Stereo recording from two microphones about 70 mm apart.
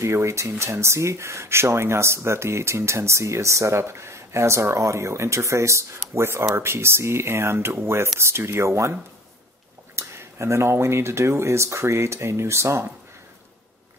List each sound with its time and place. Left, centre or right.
0.0 s speech: right
9.9 s speech: right